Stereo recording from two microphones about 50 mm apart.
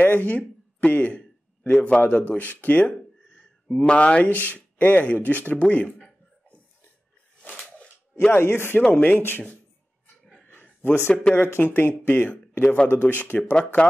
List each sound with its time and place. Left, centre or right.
0.0 s speech: left
3.6 s speech: centre
7.5 s a sound: centre
8.3 s speech: left
8.9 s speech: left
10.4 s a sound: left
11.3 s speech: left
13.4 s speech: centre